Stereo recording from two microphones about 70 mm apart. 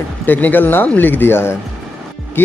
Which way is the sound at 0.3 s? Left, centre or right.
Left.